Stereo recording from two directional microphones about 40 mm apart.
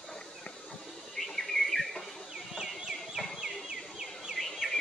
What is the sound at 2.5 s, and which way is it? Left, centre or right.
Fowl, centre.